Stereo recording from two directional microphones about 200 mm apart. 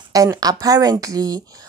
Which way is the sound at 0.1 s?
15° right (ahead or behind).